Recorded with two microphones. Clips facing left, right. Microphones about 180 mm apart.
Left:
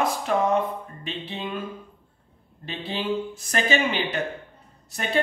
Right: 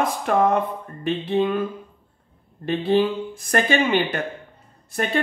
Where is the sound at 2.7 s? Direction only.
55° right (ahead or behind).